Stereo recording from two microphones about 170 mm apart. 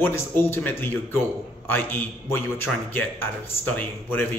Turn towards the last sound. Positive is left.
turn(degrees=10)  # may be behind; listen again after turning